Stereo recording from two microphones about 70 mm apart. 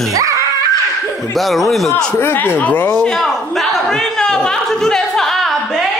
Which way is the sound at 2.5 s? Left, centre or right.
Left.